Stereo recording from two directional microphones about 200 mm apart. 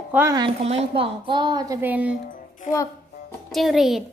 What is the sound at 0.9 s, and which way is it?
A woman's voice, 25° right (ahead or behind).